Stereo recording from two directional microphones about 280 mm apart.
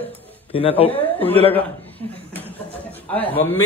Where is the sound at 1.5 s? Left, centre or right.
Centre.